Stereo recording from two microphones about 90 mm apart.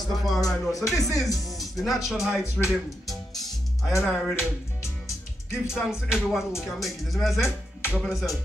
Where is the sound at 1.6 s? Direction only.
Centre (ahead or behind).